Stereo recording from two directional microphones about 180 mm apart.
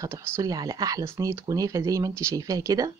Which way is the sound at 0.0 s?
20° right (ahead or behind).